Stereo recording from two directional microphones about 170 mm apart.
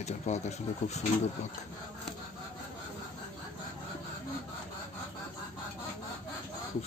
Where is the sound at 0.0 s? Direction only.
40° left (ahead or behind).